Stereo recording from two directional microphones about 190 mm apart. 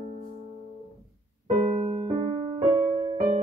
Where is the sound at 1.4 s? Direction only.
30° right (ahead or behind).